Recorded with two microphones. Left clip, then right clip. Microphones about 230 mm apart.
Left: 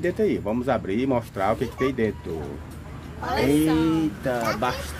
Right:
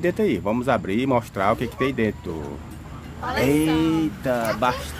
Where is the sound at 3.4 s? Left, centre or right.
Right.